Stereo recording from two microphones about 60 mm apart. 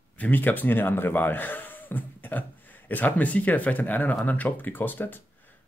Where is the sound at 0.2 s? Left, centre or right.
Left.